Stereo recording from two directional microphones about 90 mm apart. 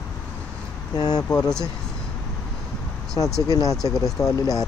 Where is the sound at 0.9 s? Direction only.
45° left (ahead or behind).